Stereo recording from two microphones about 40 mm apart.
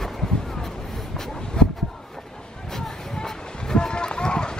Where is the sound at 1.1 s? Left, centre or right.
Centre.